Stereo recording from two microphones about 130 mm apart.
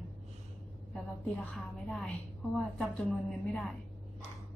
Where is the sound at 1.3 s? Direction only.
Centre (ahead or behind).